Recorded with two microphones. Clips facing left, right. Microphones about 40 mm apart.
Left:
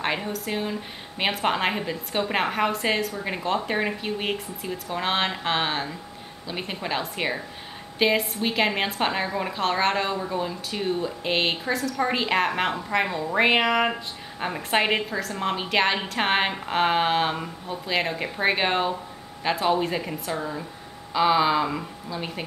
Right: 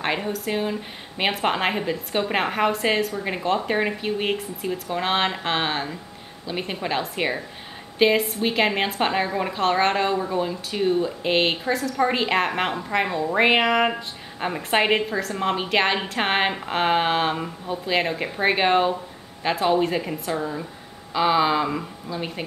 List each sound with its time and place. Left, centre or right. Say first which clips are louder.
0.0 s a woman's voice: right 2 dB; centre